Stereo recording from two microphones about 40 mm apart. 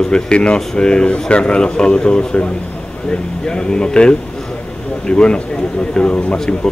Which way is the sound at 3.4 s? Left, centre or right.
Centre.